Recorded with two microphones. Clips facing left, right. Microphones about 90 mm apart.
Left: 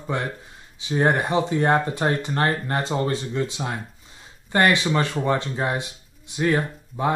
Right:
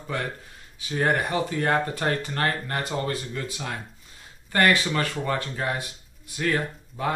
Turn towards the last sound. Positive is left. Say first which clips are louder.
# left 4 dB
turn(degrees=25)  # may be behind; listen again after turning